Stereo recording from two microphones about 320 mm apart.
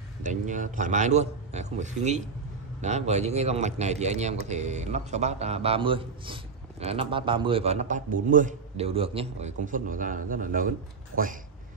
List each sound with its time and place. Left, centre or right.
0.2 s a man's voice: right
11.1 s speech: right